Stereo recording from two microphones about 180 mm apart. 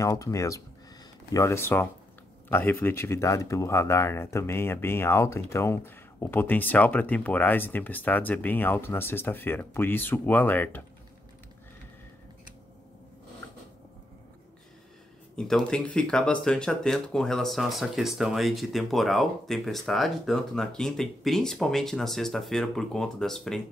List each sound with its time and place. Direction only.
0.0 s speech: 15° left (ahead or behind)
15.3 s speech: 5° left (ahead or behind)